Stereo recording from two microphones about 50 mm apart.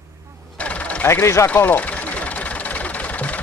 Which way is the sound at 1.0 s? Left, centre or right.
Left.